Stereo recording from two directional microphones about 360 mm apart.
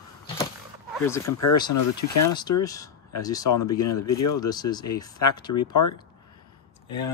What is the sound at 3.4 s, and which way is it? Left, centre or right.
Speech, left.